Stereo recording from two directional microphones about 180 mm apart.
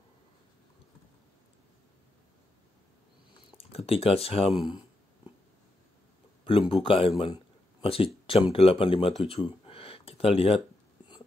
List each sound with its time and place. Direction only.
3.5 s speech: 30° left (ahead or behind)
6.4 s speech: 30° left (ahead or behind)